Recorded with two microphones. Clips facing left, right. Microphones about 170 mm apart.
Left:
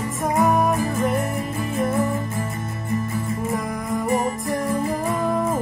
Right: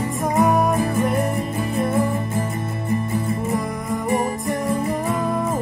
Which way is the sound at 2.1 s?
25° right (ahead or behind).